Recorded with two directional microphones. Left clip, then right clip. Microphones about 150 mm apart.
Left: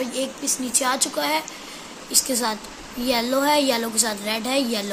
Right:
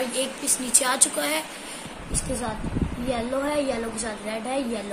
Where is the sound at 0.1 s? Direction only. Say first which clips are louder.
Left 1 dB; 70° left (ahead or behind).